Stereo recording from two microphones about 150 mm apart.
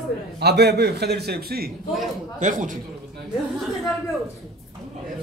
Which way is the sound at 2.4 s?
60° right (ahead or behind).